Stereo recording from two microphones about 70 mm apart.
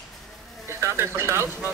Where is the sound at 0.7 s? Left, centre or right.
Right.